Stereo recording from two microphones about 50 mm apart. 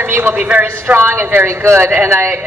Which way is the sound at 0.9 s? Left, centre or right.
Right.